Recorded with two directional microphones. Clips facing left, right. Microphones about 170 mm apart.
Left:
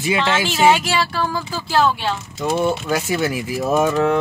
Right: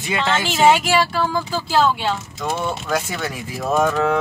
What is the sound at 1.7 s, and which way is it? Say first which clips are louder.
Speech: even; 15° right (ahead or behind).